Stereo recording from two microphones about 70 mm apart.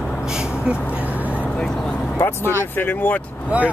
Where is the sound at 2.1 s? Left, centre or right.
Left.